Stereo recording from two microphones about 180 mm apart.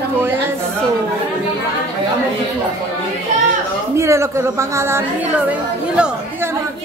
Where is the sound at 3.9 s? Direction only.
15° right (ahead or behind).